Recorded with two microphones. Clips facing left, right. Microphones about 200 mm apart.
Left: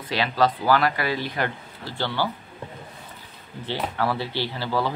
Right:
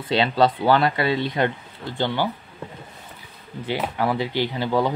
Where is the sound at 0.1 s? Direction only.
25° right (ahead or behind).